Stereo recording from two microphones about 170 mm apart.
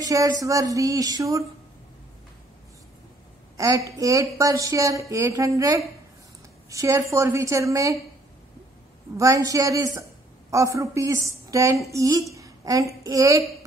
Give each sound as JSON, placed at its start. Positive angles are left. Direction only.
{"t": 0.0, "sound": "speech", "side_deg": -20}
{"t": 3.5, "sound": "a woman's voice", "side_deg": -20}
{"t": 9.1, "sound": "a woman's voice", "side_deg": -20}